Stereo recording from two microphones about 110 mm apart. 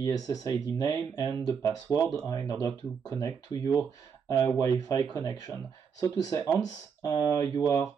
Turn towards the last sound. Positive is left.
turn(degrees=30)  # may be behind; listen again after turning